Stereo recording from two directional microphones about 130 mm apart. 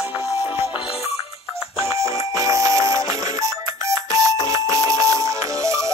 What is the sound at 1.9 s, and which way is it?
Music, 25° right (ahead or behind).